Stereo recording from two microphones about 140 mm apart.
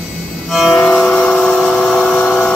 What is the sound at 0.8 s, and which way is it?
Vehicle, 10° left (ahead or behind).